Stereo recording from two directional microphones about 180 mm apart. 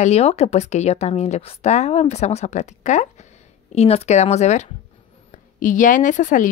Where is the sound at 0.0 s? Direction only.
35° left (ahead or behind).